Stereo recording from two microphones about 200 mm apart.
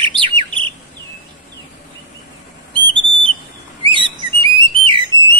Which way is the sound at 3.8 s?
25° right (ahead or behind).